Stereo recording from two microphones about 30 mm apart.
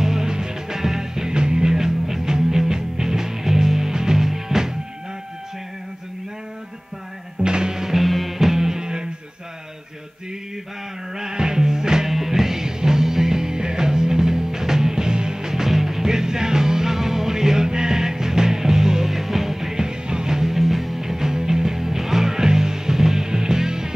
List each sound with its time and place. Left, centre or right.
0.0 s music: centre
7.4 s music: right
7.9 s music: centre
8.4 s music: centre
11.1 s music: right
12.1 s music: centre
20.5 s music: centre